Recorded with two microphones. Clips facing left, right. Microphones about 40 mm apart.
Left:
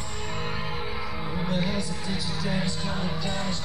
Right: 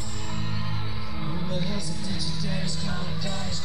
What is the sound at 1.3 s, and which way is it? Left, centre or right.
Music, left.